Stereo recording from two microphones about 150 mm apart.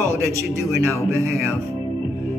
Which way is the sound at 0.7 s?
20° right (ahead or behind).